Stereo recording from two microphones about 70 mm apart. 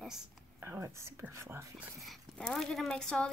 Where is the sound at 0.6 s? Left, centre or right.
Right.